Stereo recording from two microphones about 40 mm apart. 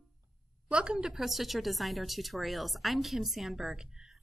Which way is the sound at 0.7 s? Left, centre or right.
Right.